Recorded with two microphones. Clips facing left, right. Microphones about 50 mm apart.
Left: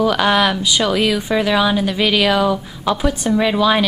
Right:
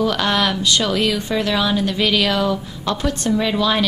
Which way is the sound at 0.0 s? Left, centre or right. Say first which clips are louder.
Left 4 dB; centre.